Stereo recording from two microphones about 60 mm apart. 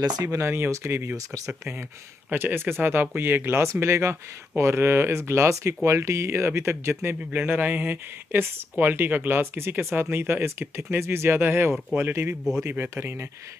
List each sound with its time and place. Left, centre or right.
0.0 s speech: right
2.3 s speech: right